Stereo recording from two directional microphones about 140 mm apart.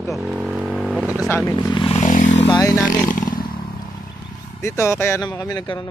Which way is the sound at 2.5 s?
25° left (ahead or behind).